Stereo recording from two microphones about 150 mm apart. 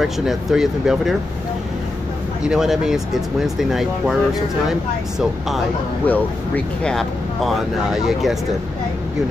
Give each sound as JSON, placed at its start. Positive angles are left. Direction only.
{"t": 0.0, "sound": "speech", "side_deg": 0}
{"t": 2.4, "sound": "speech", "side_deg": -5}
{"t": 6.0, "sound": "speech", "side_deg": 10}